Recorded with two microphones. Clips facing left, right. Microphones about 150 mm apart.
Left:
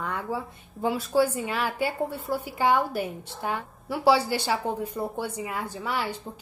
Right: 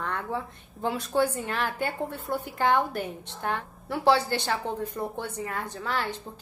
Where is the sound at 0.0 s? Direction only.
10° left (ahead or behind).